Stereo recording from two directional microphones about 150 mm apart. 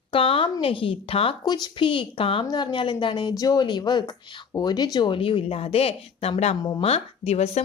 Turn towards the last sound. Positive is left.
turn(degrees=45)  # may be behind; listen again after turning